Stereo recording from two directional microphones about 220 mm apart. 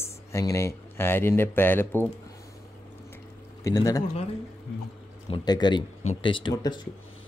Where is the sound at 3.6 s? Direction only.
15° left (ahead or behind).